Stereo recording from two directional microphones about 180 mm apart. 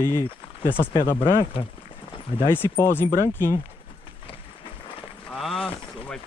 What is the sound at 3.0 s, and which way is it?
Speech, 20° right (ahead or behind).